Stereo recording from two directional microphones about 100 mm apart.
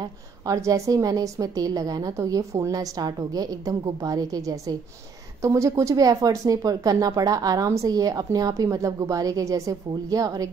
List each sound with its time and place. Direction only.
0.0 s speech: 35° right (ahead or behind)